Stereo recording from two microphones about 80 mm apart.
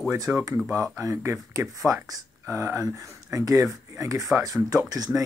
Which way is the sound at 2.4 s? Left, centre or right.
Right.